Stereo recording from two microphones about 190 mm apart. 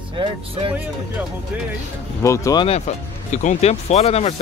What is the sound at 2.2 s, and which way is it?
Speech, 15° left (ahead or behind).